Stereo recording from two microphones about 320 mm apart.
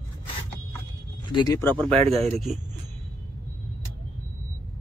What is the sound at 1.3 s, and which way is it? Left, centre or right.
Speech, centre.